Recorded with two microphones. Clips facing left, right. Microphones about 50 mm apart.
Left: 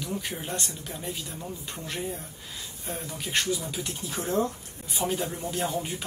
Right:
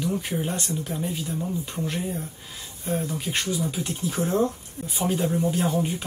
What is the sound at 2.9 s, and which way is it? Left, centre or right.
Speech, centre.